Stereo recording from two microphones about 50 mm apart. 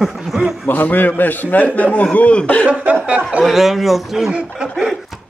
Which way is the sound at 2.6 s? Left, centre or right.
Centre.